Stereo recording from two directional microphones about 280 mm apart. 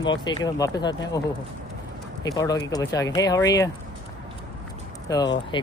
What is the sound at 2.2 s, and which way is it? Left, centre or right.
Speech, centre.